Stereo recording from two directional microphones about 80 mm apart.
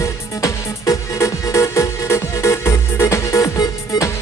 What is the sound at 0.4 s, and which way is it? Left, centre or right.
Music, left.